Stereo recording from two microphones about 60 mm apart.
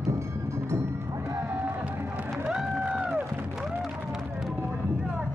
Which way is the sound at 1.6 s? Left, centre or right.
Right.